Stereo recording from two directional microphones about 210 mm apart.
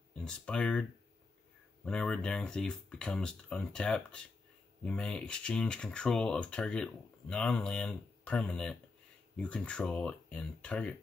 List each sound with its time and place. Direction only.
0.1 s speech: 5° left (ahead or behind)
1.9 s speech: 5° left (ahead or behind)